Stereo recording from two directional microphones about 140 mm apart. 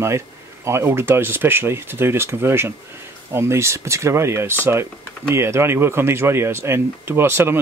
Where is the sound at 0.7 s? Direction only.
20° right (ahead or behind).